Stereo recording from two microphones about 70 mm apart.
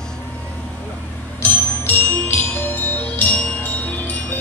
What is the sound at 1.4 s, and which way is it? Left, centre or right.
Music, left.